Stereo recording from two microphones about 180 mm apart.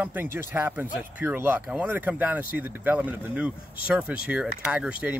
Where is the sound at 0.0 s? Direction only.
10° right (ahead or behind).